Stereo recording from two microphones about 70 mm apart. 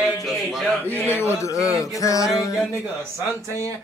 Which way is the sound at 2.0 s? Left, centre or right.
Left.